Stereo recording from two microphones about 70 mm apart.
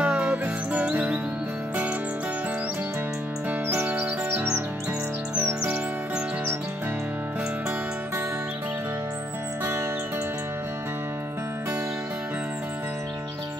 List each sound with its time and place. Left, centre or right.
0.0 s music: centre
3.6 s music: right
5.6 s music: centre